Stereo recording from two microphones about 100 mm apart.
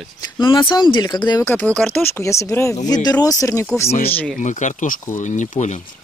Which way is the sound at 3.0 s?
40° left (ahead or behind).